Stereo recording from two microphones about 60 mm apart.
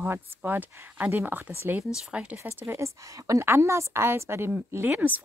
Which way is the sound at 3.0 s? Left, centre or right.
Right.